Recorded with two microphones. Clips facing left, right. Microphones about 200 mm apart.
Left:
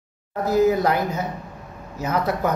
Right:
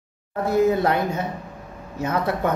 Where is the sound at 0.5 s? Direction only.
25° right (ahead or behind).